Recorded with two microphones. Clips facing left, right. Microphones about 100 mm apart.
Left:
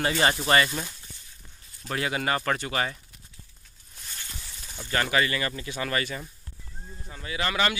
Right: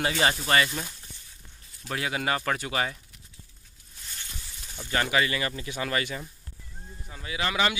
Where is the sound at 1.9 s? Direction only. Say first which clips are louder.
Left 1 dB; centre (ahead or behind).